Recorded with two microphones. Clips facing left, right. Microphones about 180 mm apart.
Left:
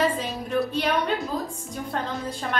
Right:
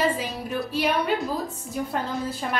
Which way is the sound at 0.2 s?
5° right (ahead or behind).